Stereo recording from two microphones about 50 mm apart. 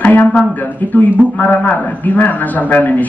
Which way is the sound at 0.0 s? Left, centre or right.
Left.